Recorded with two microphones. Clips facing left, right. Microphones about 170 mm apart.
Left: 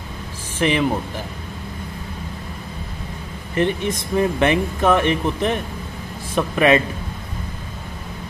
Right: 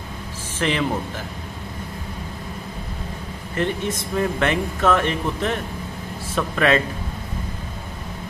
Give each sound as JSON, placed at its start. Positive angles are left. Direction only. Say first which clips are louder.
{"t": 0.6, "sound": "speech", "louder": "left 3 dB", "side_deg": 15}
{"t": 3.5, "sound": "speech", "louder": "left 3 dB", "side_deg": 20}